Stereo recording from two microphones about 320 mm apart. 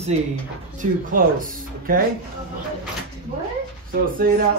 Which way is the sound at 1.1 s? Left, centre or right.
Right.